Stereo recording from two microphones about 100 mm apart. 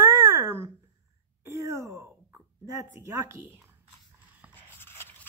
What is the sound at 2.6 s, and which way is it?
Speech, 30° right (ahead or behind).